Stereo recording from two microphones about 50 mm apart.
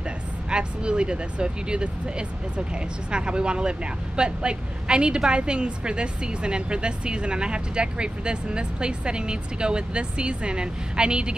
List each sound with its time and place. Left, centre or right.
0.5 s a woman's voice: centre